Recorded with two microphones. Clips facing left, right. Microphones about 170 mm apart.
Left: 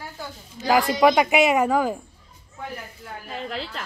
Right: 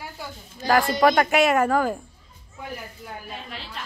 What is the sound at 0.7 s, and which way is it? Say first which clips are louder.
Speech: left 1 dB; centre (ahead or behind).